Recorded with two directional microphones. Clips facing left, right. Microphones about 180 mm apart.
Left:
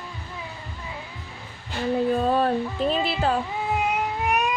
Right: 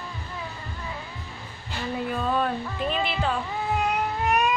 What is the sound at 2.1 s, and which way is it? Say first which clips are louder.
Music: left 2 dB; 35° left (ahead or behind).